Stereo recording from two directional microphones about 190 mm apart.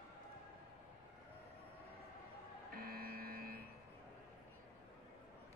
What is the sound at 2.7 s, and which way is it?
Vehicle, 50° right (ahead or behind).